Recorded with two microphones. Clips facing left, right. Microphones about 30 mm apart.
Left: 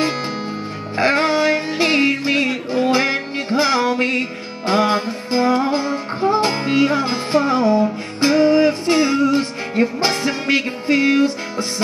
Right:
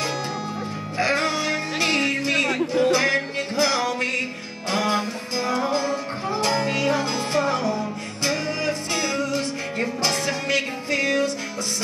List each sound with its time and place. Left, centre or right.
0.9 s music: left
1.8 s music: left